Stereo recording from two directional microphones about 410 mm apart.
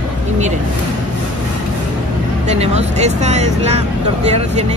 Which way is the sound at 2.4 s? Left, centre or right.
Centre.